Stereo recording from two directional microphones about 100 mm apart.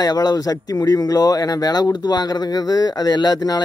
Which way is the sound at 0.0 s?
40° left (ahead or behind).